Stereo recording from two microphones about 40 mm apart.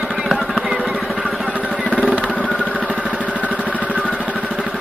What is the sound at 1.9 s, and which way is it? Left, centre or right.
Vehicle, right.